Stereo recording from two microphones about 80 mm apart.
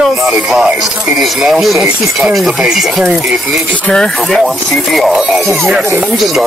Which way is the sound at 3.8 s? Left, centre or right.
Centre.